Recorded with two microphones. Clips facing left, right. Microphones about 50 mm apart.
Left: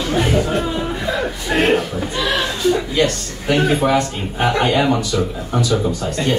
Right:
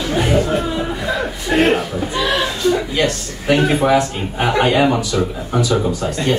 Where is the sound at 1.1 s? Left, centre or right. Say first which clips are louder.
Right 1 dB; centre.